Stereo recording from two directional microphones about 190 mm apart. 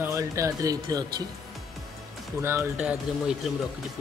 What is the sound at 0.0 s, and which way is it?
Speech, 15° right (ahead or behind).